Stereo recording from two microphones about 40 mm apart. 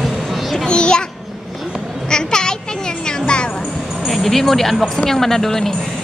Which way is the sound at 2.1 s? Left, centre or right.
Centre.